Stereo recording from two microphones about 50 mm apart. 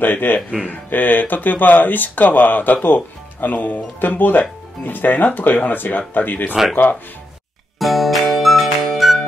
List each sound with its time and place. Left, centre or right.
0.0 s speech: left
7.8 s music: centre